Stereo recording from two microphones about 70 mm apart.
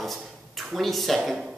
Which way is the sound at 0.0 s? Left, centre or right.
Centre.